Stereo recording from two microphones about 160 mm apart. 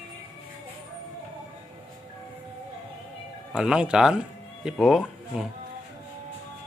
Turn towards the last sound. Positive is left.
turn(degrees=0)  # may be behind; listen again after turning